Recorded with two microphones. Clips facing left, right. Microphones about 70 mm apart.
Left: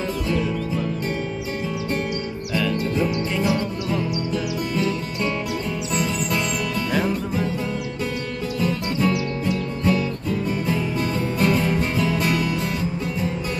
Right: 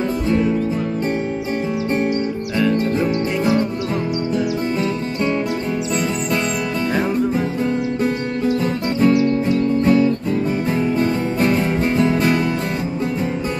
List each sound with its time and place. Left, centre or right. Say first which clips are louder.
0.3 s music: right 6 dB; right
2.5 s music: right 4 dB; right
6.9 s music: right 5 dB; right
8.5 s music: right 5 dB; right